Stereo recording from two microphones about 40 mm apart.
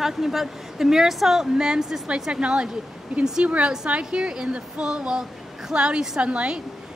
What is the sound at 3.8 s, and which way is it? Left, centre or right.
A woman's voice, right.